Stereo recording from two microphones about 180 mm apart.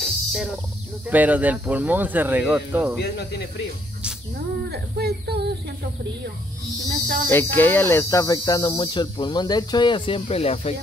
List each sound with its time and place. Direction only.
0.0 s a sound: centre (ahead or behind)
1.1 s speech: 10° right (ahead or behind)
3.0 s speech: 65° left (ahead or behind)
4.6 s speech: 60° right (ahead or behind)
7.2 s speech: 10° left (ahead or behind); by 10.7 s 35° left (ahead or behind)